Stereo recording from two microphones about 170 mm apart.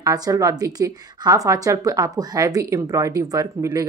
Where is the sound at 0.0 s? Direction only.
20° right (ahead or behind).